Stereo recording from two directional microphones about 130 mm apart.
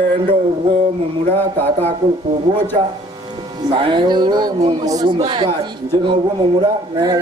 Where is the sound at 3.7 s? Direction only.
40° right (ahead or behind).